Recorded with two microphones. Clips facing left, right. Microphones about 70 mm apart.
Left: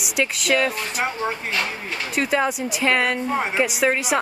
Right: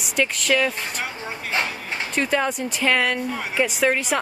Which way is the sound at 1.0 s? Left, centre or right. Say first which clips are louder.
Left 6 dB; left.